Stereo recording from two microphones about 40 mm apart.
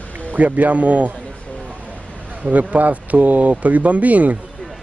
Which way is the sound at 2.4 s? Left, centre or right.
Right.